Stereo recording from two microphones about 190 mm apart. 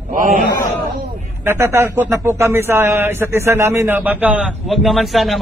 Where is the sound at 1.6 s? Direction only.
15° right (ahead or behind).